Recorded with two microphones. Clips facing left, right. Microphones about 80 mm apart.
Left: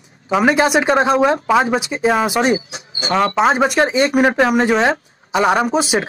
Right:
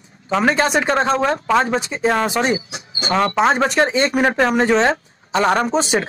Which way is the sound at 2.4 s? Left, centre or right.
Left.